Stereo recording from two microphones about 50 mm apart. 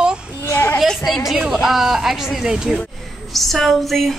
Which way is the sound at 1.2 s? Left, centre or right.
Centre.